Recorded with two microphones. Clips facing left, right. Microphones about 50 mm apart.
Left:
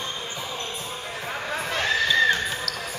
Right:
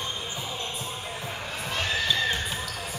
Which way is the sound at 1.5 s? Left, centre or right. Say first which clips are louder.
Left 5 dB; left.